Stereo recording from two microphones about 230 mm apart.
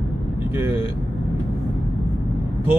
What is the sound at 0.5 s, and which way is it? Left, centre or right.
Speech, centre.